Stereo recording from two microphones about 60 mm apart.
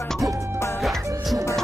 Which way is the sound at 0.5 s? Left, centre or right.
Left.